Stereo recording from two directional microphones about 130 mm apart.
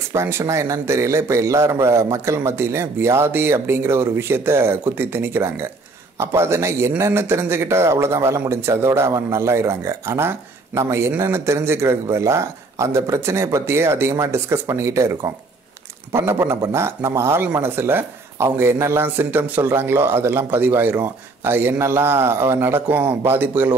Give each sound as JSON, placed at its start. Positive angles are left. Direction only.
{"t": 0.1, "sound": "speech", "side_deg": -20}